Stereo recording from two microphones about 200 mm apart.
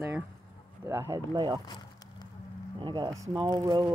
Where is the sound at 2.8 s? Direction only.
20° right (ahead or behind).